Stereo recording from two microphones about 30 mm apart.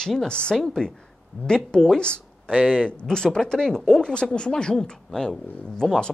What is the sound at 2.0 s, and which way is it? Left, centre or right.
Speech, left.